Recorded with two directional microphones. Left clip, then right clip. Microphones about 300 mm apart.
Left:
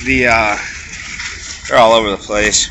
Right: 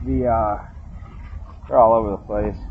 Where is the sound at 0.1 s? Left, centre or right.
Centre.